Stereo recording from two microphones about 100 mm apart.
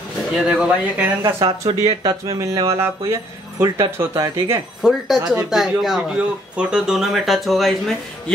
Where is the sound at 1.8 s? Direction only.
35° right (ahead or behind).